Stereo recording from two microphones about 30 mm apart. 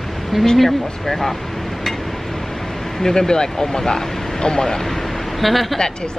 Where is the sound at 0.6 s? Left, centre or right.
Centre.